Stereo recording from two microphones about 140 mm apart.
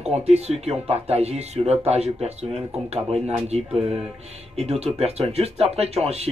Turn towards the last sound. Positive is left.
turn(degrees=-45)  # may be behind; listen again after turning